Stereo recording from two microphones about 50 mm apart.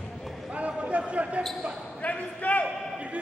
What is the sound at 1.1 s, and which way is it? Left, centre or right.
Basketball bounce, right.